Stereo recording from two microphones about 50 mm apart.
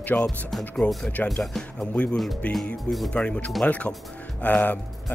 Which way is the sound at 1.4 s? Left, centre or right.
Centre.